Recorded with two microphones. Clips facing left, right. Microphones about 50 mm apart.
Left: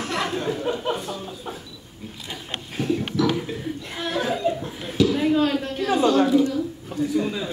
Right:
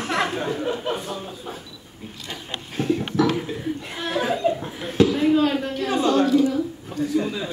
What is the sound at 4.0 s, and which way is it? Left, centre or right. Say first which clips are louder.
Chuckle: right 1 dB; centre.